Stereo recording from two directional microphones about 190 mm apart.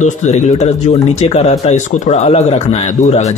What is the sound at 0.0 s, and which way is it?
Speech, 40° left (ahead or behind).